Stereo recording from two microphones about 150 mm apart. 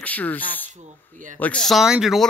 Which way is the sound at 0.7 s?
55° right (ahead or behind).